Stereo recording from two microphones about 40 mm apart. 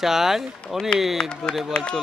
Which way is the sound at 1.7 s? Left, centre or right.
Left.